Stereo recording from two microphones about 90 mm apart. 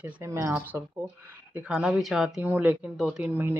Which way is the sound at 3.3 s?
25° right (ahead or behind).